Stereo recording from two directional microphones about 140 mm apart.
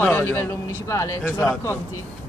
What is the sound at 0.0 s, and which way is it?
A man's voice, 15° left (ahead or behind).